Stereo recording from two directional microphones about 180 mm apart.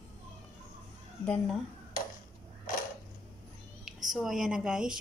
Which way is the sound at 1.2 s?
5° left (ahead or behind).